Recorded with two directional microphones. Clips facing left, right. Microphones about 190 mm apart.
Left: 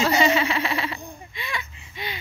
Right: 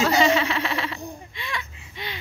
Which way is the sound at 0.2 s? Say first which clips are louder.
Even; 10° left (ahead or behind).